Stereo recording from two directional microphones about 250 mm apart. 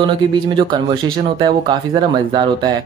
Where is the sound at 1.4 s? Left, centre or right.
Centre.